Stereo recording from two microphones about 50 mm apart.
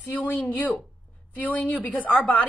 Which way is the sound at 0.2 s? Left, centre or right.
Left.